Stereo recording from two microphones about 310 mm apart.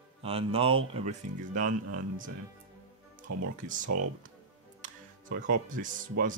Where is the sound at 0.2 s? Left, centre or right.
Centre.